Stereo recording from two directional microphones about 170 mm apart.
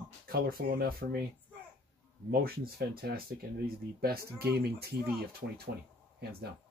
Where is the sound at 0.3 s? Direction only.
60° right (ahead or behind).